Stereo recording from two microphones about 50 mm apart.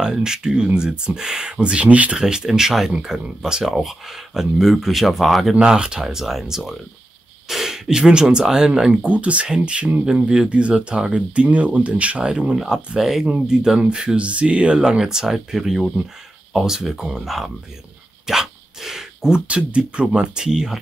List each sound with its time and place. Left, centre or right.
0.0 s speech: centre
2.1 s speech: centre
5.5 s speech: centre
8.9 s speech: right; by 17.5 s centre
18.2 s dog: centre
19.4 s speech: right